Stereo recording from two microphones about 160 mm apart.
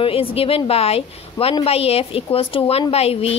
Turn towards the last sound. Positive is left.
turn(degrees=40)  # may be behind; listen again after turning